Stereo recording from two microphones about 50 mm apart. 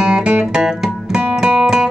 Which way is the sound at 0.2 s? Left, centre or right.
Right.